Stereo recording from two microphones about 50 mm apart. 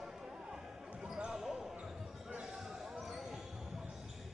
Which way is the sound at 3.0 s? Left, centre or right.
Centre.